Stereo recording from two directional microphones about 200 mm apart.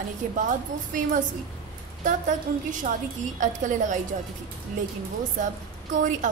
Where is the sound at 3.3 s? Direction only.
40° right (ahead or behind).